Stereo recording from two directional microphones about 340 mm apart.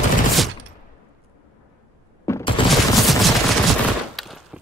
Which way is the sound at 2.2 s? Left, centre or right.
Centre.